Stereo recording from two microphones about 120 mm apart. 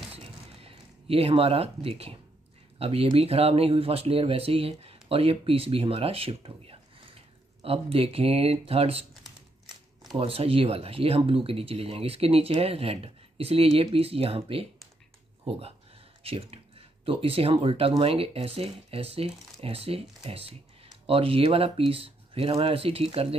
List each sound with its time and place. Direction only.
0.1 s a sound: 55° right (ahead or behind)
2.8 s speech: 55° right (ahead or behind)
10.1 s speech: 50° right (ahead or behind)
16.2 s speech: 55° right (ahead or behind)